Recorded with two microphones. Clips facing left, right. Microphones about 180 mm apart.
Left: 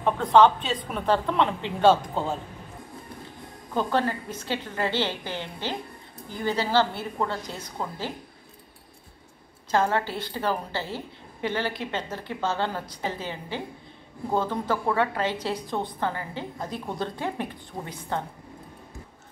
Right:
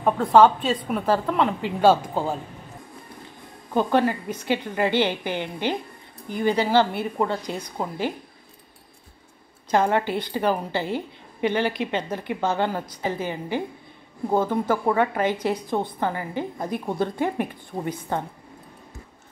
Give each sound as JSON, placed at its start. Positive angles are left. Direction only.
{"t": 0.0, "sound": "a woman's voice", "side_deg": -5}
{"t": 3.7, "sound": "a woman's voice", "side_deg": -15}
{"t": 9.7, "sound": "a woman's voice", "side_deg": -15}